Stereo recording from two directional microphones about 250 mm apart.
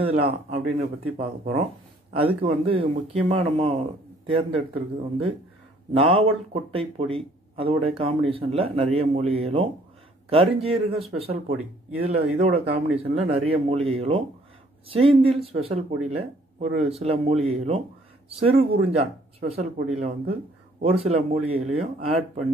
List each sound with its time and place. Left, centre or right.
0.0 s speech: right
17.0 s speech: right